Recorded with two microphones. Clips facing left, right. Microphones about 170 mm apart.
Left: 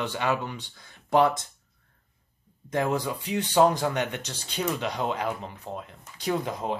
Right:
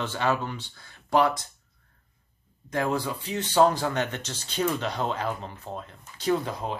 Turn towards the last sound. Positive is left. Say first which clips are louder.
# right 1 dB
turn(degrees=20)  # may be behind; listen again after turning